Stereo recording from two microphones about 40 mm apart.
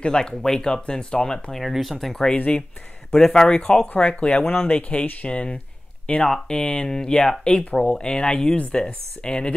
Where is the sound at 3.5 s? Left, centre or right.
Left.